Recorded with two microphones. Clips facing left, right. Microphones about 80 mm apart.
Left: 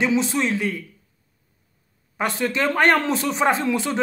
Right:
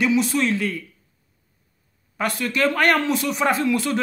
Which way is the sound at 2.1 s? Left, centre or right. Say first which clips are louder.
Even; left.